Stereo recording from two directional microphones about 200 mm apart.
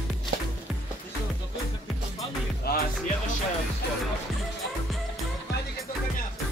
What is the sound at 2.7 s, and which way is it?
Music, 50° left (ahead or behind).